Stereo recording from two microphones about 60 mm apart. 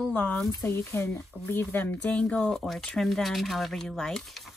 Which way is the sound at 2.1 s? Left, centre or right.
Centre.